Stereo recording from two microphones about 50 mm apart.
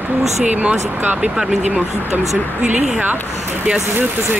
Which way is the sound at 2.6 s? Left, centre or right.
Right.